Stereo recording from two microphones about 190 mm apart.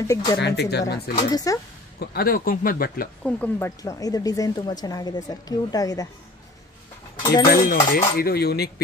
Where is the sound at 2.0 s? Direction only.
55° left (ahead or behind).